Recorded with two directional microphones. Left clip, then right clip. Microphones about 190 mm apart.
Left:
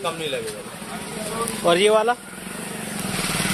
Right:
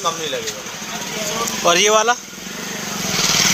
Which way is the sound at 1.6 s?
10° left (ahead or behind).